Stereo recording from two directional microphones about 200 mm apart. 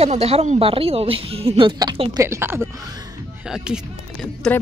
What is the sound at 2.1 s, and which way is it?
Speech, 15° right (ahead or behind).